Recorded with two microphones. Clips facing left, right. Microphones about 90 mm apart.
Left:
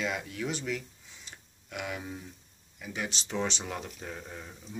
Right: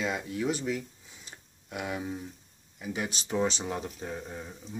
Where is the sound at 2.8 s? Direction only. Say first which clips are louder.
Right 3 dB; 15° right (ahead or behind).